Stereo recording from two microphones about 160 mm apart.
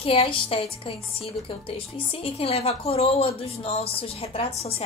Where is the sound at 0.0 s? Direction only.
35° left (ahead or behind).